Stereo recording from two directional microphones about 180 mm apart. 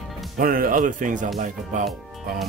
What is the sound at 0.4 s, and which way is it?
Speech, 50° right (ahead or behind).